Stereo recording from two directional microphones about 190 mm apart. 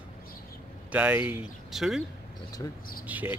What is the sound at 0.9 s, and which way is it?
Speech, 5° right (ahead or behind).